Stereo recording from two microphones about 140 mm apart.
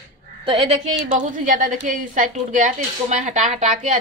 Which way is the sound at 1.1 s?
65° right (ahead or behind).